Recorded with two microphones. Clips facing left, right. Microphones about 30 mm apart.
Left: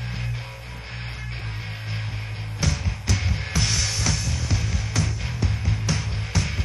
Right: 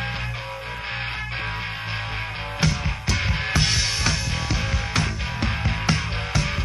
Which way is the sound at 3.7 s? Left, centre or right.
Right.